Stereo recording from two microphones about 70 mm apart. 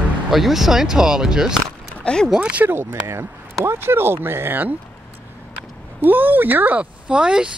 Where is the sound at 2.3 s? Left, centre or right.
Centre.